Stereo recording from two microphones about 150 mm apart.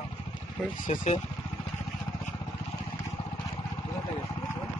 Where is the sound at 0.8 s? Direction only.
50° left (ahead or behind).